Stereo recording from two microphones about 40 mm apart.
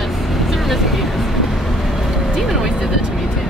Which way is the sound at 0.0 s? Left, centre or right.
Centre.